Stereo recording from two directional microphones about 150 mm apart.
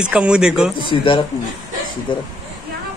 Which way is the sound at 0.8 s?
35° left (ahead or behind).